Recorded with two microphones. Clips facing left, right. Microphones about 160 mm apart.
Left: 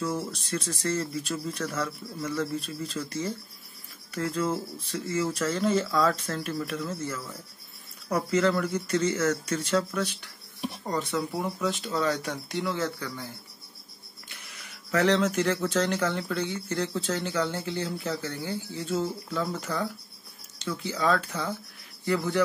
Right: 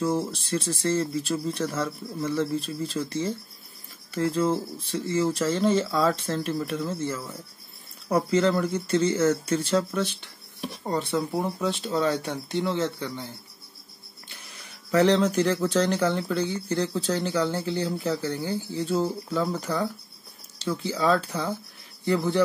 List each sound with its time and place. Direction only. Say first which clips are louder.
0.0 s speech: right 5 dB; 30° right (ahead or behind)
14.3 s speech: right 1 dB; 30° right (ahead or behind)